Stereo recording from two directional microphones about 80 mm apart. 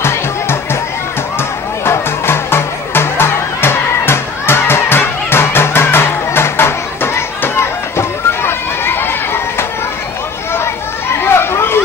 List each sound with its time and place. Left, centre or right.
0.0 s music: left
1.9 s music: left
10.5 s chatter: left